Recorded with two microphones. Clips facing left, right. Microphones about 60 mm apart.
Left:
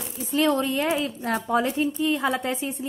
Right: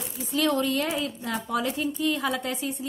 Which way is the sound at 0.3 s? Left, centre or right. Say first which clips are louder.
Left 2 dB; left.